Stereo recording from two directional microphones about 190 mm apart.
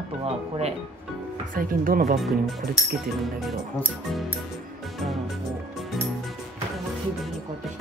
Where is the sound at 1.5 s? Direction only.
50° right (ahead or behind).